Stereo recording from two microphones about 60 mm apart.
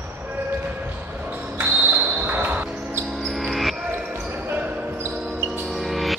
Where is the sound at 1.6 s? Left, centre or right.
Right.